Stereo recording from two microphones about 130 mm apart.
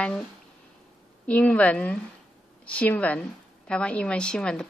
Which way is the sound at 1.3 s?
10° left (ahead or behind).